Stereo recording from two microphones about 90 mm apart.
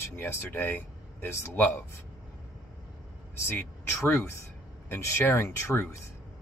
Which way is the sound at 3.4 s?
20° left (ahead or behind).